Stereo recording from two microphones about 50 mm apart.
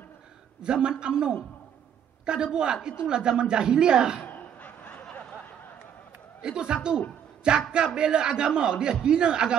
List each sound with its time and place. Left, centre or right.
0.6 s a woman's voice: centre
4.2 s a sound: left
6.4 s a woman's voice: centre